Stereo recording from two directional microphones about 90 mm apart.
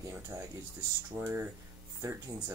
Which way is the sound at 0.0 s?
35° right (ahead or behind).